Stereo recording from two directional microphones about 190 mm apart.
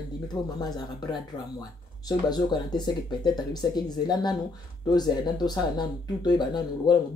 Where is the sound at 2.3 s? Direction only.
20° left (ahead or behind).